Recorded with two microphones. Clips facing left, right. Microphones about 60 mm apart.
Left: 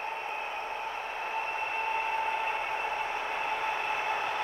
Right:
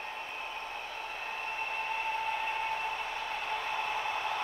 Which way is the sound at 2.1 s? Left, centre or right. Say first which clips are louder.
Left 3 dB; left.